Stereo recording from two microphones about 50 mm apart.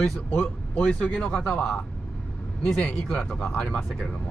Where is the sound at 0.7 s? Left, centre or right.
Left.